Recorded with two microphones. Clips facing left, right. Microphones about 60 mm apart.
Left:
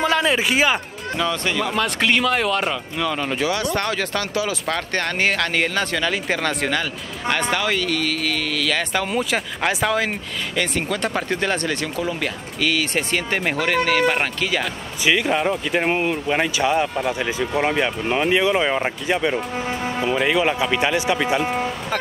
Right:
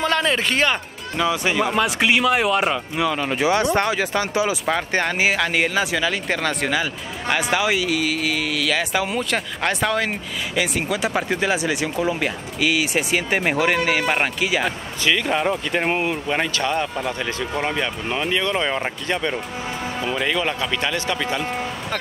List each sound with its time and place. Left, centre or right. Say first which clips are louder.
0.0 s speech: left 1 dB; centre
1.1 s speech: right 2 dB; centre
3.4 s speech: right 5 dB; right
15.0 s speech: left 1 dB; centre